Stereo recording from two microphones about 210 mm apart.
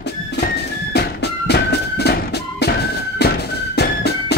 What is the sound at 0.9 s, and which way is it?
Music, 50° left (ahead or behind).